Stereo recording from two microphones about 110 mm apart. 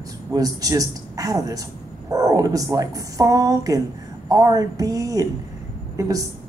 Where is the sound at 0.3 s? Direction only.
35° right (ahead or behind).